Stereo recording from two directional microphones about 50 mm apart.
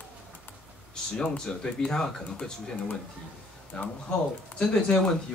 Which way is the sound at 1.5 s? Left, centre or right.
Centre.